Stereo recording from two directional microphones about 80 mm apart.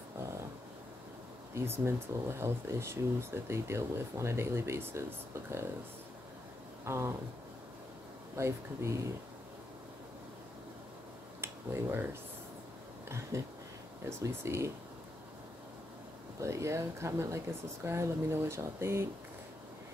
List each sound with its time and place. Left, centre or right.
1.5 s speech: right
6.8 s a sound: right
8.4 s speech: right
11.4 s speech: right
13.3 s speech: right
16.3 s speech: right